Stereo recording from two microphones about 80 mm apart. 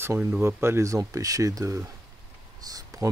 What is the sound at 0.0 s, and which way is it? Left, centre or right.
Speech, right.